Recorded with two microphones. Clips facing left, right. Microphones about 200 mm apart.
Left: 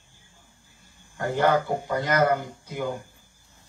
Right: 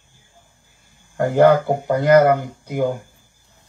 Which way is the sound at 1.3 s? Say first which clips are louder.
Right 9 dB; 60° right (ahead or behind).